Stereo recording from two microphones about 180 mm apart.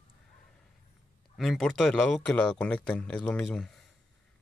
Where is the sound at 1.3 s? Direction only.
Centre (ahead or behind).